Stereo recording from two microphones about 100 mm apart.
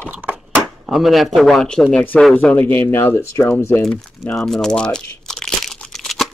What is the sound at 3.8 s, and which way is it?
Speech, 5° left (ahead or behind).